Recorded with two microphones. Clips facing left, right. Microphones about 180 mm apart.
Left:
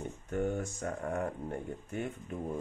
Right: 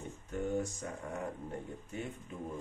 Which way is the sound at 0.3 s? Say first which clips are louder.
Left 2 dB; 55° left (ahead or behind).